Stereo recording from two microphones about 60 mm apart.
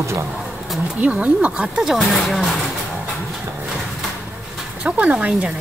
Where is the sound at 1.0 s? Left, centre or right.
Right.